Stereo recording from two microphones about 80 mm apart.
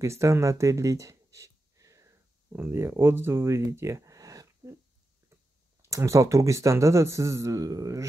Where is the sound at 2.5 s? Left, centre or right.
Right.